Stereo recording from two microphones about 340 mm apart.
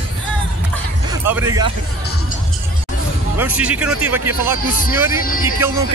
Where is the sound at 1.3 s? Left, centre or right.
Centre.